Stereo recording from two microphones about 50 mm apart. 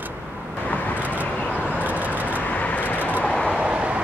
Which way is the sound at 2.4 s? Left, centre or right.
Left.